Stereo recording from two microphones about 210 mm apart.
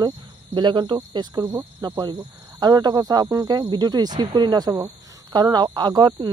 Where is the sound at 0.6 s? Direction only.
20° right (ahead or behind).